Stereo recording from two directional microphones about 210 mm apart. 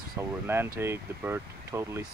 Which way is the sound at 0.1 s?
10° right (ahead or behind).